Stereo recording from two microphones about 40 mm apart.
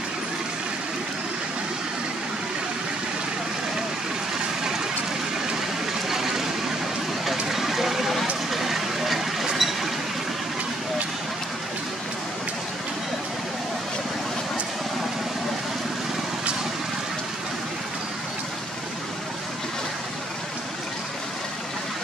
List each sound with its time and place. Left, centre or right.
6.0 s vehicle: centre